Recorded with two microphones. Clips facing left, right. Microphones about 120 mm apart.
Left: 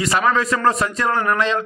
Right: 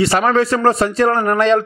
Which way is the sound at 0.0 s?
30° right (ahead or behind).